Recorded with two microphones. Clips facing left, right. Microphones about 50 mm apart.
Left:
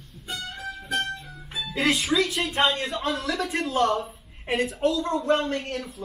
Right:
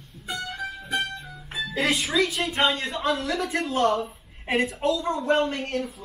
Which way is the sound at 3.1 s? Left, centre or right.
Right.